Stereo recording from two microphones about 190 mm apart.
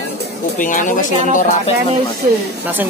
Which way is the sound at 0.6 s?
45° left (ahead or behind).